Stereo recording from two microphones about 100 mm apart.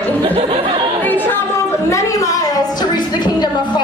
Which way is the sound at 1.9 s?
30° left (ahead or behind).